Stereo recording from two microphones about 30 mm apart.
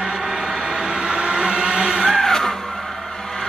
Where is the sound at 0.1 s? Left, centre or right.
Centre.